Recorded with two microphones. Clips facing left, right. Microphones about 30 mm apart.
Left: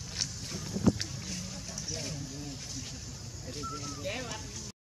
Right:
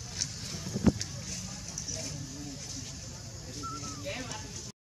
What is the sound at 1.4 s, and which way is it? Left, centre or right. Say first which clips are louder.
Music: left 1 dB; centre.